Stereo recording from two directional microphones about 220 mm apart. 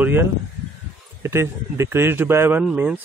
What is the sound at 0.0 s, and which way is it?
Speech, 10° right (ahead or behind).